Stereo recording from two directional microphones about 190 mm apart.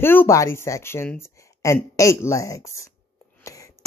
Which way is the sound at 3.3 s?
15° left (ahead or behind).